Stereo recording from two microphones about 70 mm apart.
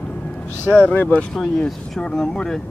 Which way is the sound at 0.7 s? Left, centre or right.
Left.